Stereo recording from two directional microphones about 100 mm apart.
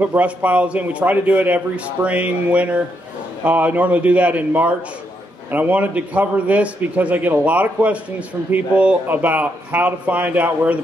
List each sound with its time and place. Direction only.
0.0 s a man's voice: 15° right (ahead or behind)